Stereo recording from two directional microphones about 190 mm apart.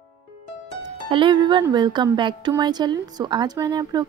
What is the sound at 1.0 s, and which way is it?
Speech, 25° right (ahead or behind).